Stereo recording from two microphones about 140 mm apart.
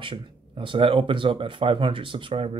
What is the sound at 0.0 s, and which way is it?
Speech, 35° right (ahead or behind).